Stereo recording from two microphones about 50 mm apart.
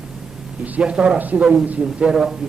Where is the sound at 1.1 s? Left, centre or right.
Right.